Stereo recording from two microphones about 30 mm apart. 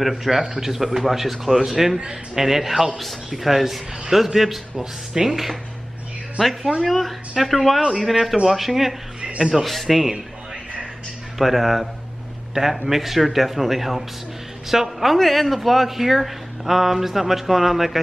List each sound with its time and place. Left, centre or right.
0.0 s speech: centre
4.7 s speech: centre
6.9 s speech: centre
11.3 s speech: centre
15.1 s speech: centre